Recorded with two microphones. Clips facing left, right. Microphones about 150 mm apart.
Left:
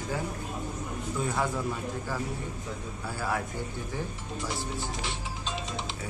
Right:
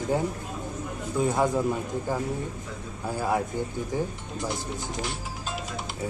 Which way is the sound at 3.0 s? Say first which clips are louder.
Right 6 dB; 15° right (ahead or behind).